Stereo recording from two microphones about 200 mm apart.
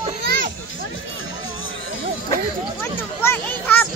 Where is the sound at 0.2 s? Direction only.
50° right (ahead or behind).